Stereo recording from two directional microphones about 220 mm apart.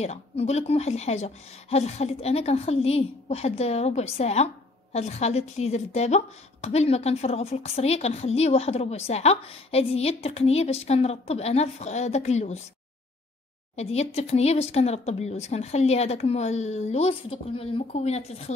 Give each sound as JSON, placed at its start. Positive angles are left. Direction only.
{"t": 0.0, "sound": "a woman's voice", "side_deg": 30}
{"t": 13.7, "sound": "a woman's voice", "side_deg": 30}